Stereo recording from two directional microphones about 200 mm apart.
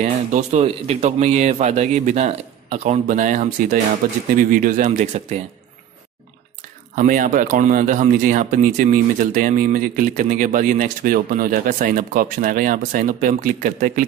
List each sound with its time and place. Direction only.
0.0 s speech: 35° right (ahead or behind)
7.0 s a man's voice: 40° right (ahead or behind)